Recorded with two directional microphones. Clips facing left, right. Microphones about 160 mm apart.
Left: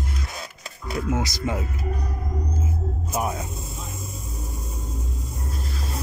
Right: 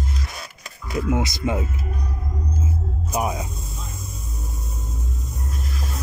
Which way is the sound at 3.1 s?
15° right (ahead or behind).